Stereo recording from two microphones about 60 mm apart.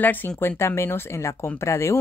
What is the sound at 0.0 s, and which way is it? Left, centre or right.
Speech, left.